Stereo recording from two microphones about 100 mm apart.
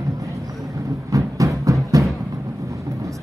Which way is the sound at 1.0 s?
35° right (ahead or behind).